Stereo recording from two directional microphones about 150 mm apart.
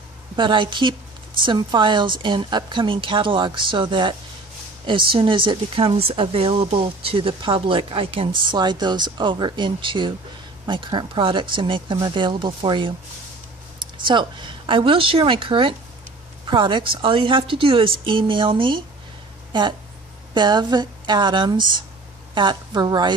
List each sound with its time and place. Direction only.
0.4 s a woman's voice: 35° right (ahead or behind)
20.3 s a woman's voice: 30° right (ahead or behind)